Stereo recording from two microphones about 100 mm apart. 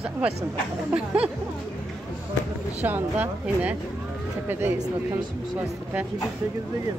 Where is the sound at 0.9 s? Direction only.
15° right (ahead or behind).